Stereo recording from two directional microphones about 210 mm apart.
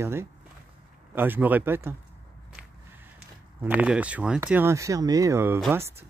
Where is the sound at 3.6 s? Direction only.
5° right (ahead or behind).